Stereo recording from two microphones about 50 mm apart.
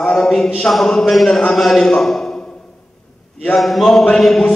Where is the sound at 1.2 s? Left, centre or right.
Centre.